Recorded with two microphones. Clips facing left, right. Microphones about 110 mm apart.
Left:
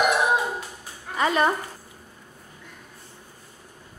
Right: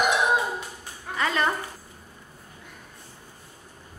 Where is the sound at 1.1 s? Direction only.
20° left (ahead or behind).